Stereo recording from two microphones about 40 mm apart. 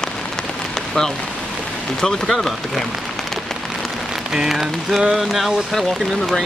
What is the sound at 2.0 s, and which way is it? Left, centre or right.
Speech, centre.